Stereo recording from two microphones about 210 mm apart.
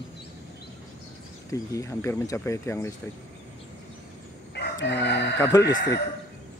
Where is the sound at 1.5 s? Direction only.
15° left (ahead or behind).